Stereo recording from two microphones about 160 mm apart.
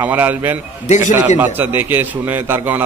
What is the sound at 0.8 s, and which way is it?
Speech, 45° left (ahead or behind).